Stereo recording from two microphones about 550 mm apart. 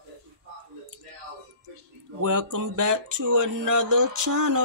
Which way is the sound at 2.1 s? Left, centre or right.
Right.